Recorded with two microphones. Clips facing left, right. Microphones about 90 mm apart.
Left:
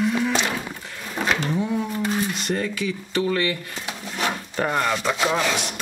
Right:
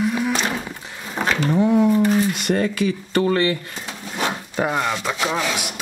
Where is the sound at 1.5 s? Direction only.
65° right (ahead or behind).